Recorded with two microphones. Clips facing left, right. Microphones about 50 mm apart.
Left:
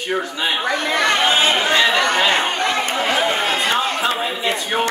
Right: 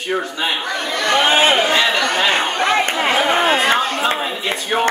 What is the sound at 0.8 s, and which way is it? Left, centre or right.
Speech, left.